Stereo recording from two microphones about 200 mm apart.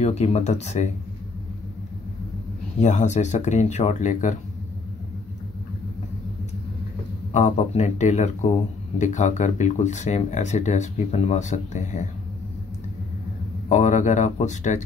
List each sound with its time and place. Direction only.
0.0 s speech: 35° left (ahead or behind)
2.8 s speech: 35° left (ahead or behind)
7.3 s speech: 35° left (ahead or behind)
13.7 s speech: 35° left (ahead or behind)